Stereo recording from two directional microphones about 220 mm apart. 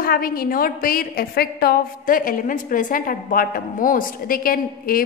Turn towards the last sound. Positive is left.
turn(degrees=40)  # may be behind; listen again after turning